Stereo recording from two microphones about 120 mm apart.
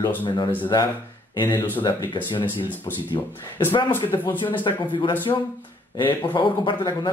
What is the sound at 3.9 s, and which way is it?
Speech, 20° left (ahead or behind).